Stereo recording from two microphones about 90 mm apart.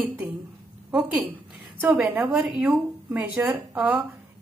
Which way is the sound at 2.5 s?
5° right (ahead or behind).